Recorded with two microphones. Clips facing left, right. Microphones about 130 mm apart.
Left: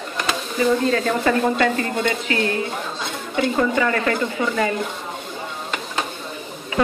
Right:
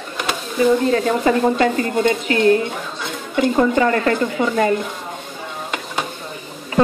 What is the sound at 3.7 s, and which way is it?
Speech, 35° right (ahead or behind).